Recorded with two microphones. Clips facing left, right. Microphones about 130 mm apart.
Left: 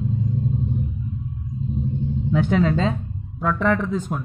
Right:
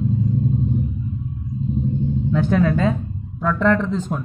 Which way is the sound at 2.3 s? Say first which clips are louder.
Right 1 dB; 20° left (ahead or behind).